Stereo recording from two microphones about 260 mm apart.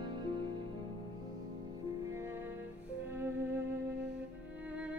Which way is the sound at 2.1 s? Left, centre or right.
Centre.